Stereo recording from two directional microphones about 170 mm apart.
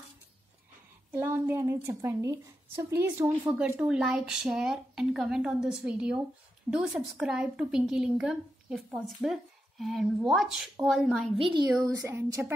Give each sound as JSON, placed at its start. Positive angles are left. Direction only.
{"t": 1.1, "sound": "a woman's voice", "side_deg": -10}
{"t": 11.3, "sound": "a woman's voice", "side_deg": -30}
{"t": 11.7, "sound": "speech", "side_deg": -20}